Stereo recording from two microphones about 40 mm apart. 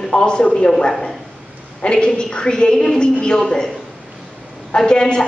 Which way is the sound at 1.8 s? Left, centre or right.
Left.